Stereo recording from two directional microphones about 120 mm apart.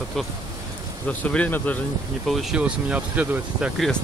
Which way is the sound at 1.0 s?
10° left (ahead or behind).